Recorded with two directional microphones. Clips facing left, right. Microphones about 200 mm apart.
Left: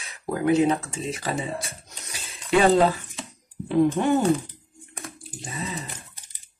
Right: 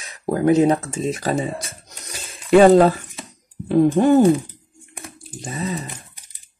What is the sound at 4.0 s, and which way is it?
Speech, 35° right (ahead or behind).